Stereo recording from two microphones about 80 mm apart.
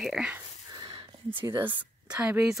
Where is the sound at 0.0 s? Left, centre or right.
Centre.